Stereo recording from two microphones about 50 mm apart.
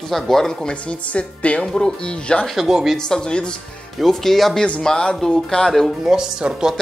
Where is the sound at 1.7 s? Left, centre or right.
Centre.